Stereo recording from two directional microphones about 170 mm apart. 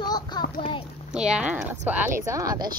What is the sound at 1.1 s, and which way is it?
Speech, 5° right (ahead or behind).